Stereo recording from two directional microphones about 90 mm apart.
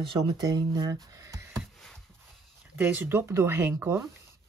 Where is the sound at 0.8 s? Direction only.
35° right (ahead or behind).